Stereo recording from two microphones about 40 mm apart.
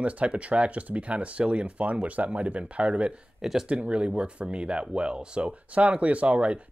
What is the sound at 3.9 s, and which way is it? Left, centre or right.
Speech, right.